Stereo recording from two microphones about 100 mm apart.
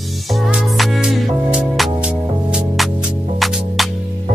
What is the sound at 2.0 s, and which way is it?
Music, 10° right (ahead or behind).